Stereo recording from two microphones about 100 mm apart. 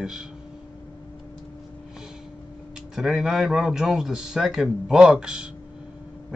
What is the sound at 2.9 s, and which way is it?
A man's voice, 5° right (ahead or behind).